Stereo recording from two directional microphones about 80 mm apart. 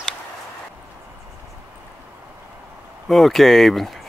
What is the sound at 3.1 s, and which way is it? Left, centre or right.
Speech, centre.